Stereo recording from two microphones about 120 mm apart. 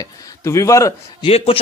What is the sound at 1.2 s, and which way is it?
Speech, 50° left (ahead or behind).